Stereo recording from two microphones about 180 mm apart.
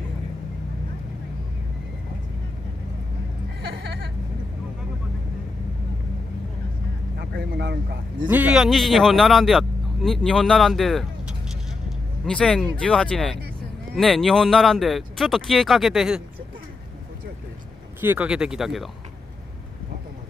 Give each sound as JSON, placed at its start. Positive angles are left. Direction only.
{"t": 3.6, "sound": "a sound", "side_deg": -65}
{"t": 7.2, "sound": "a man's voice", "side_deg": -65}
{"t": 8.3, "sound": "speech", "side_deg": -10}
{"t": 18.0, "sound": "speech", "side_deg": -10}